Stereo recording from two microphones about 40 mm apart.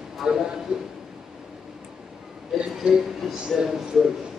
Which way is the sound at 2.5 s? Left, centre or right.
Centre.